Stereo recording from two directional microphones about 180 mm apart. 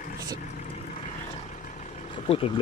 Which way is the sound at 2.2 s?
30° left (ahead or behind).